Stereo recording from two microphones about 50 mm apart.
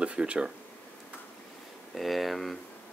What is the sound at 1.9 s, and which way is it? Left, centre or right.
Speech, centre.